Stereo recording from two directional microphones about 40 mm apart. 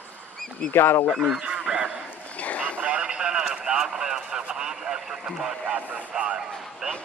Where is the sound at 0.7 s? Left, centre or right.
Left.